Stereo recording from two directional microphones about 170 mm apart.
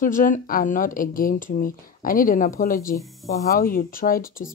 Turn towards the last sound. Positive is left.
turn(degrees=55)  # may be behind; listen again after turning